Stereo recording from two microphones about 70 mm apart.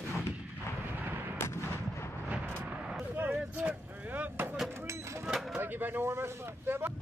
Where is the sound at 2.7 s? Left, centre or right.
Centre.